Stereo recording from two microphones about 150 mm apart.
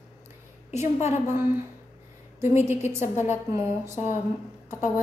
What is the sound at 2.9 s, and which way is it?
Speech, 55° left (ahead or behind).